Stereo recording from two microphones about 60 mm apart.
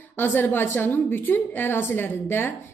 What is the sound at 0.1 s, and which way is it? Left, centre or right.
A woman's voice, left.